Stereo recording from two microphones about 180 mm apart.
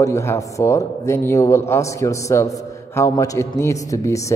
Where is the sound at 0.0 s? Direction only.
15° left (ahead or behind).